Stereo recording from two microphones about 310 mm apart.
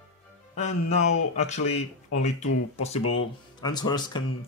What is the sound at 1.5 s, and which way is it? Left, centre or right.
Speech, left.